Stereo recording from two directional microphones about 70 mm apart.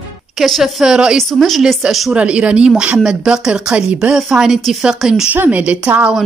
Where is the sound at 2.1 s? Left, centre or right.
Centre.